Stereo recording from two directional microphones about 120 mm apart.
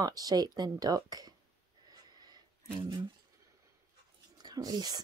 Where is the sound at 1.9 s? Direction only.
35° right (ahead or behind).